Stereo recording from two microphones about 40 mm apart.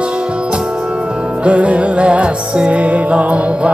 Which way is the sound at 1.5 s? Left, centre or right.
Right.